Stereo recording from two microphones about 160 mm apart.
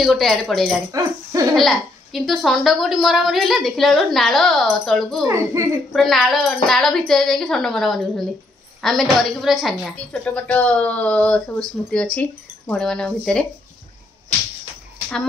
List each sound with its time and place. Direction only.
0.0 s a woman's voice: centre (ahead or behind)
0.9 s speech: 20° right (ahead or behind)
1.5 s a woman's voice: centre (ahead or behind)
5.2 s speech: 20° right (ahead or behind)
5.9 s a woman's voice: centre (ahead or behind)